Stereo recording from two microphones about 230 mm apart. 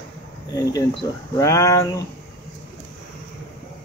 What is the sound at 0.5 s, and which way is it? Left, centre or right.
Speech, centre.